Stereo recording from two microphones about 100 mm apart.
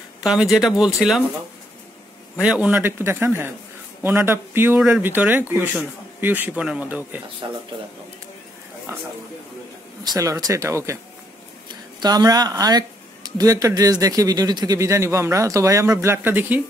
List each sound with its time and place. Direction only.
0.2 s speech: 5° right (ahead or behind)
2.3 s speech: 10° right (ahead or behind)
4.7 s speech: 10° right (ahead or behind)
5.0 s speech: 20° right (ahead or behind)
7.4 s a man's voice: 45° right (ahead or behind)
8.9 s a man's voice: 30° right (ahead or behind)
10.4 s speech: 30° right (ahead or behind)
12.0 s a man's voice: 40° right (ahead or behind); by 16.6 s 20° right (ahead or behind)